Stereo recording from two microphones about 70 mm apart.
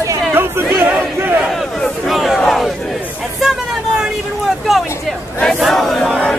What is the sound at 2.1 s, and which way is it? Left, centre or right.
Battle cry, centre.